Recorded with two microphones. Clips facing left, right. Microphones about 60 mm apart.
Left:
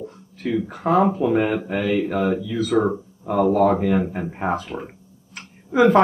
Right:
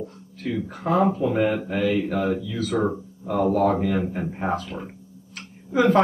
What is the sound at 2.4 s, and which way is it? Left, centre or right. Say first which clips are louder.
Speech: left 4 dB; left.